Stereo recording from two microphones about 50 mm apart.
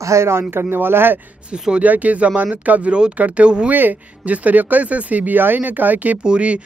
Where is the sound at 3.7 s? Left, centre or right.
Right.